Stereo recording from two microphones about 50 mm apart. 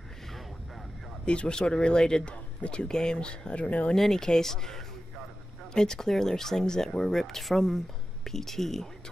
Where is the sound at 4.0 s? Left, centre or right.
Centre.